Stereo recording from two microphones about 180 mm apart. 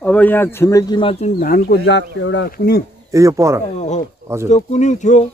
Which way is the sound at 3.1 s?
15° right (ahead or behind).